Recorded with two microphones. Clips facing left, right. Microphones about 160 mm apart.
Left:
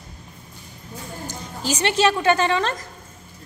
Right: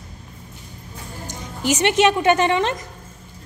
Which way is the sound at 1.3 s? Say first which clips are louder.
Right 5 dB; 20° right (ahead or behind).